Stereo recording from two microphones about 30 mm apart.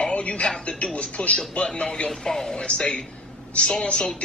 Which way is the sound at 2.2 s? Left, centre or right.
Centre.